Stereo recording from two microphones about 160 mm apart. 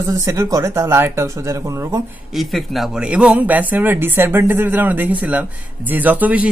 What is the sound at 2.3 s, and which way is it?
Speech, centre (ahead or behind).